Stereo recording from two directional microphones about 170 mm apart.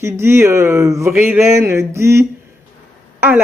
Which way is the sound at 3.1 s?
10° right (ahead or behind).